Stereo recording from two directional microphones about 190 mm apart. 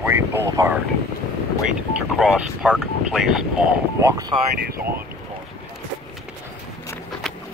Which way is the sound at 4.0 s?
20° right (ahead or behind).